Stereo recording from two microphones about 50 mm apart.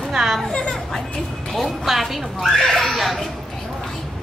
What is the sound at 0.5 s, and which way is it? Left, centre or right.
Speech, centre.